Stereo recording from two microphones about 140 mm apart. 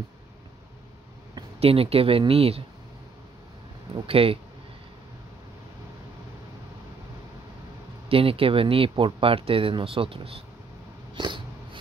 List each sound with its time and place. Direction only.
1.6 s speech: 45° right (ahead or behind)
3.9 s speech: 40° right (ahead or behind)
8.1 s speech: 40° right (ahead or behind)
11.1 s dog: 35° right (ahead or behind)